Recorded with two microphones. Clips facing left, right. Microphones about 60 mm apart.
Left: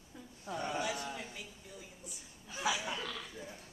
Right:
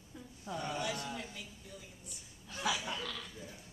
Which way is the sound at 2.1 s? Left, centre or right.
Centre.